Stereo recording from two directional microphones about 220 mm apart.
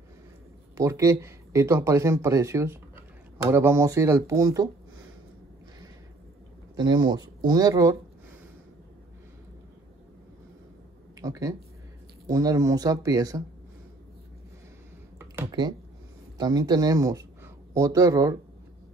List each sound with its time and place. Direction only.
0.7 s speech: 15° right (ahead or behind)
6.8 s speech: 20° right (ahead or behind)
11.1 s speech: 15° right (ahead or behind)
15.4 s a sound: 20° right (ahead or behind)
16.3 s speech: 20° right (ahead or behind)